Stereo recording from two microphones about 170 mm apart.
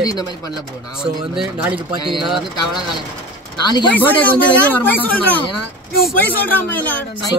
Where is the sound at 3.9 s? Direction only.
10° left (ahead or behind).